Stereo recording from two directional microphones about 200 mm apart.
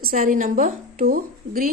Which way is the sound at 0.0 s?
45° right (ahead or behind).